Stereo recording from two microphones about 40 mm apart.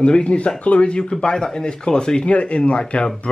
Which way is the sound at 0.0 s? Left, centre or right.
Left.